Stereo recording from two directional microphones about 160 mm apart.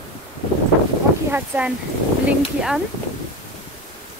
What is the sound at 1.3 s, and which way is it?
Speech, 10° right (ahead or behind).